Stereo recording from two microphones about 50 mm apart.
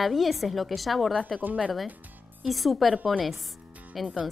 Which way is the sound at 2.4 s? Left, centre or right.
Centre.